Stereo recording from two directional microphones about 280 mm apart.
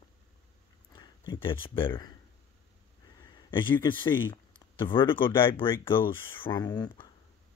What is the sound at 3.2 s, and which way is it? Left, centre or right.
Speech, centre.